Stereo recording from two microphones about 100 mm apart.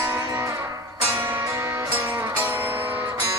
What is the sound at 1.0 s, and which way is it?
Music, 20° right (ahead or behind).